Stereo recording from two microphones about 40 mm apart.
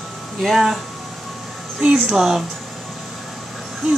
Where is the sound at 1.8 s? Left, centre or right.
Right.